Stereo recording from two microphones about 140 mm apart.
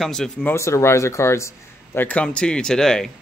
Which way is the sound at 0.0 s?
5° left (ahead or behind).